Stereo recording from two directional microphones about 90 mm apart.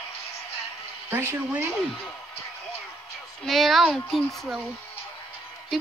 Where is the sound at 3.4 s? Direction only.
Centre (ahead or behind).